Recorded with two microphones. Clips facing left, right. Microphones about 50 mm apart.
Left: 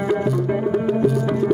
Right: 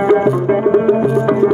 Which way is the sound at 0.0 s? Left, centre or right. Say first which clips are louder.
Right 8 dB; right.